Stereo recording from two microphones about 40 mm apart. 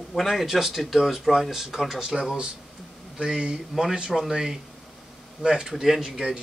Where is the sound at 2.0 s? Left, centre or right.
Centre.